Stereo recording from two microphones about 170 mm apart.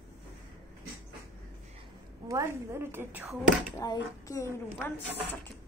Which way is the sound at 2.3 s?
15° right (ahead or behind).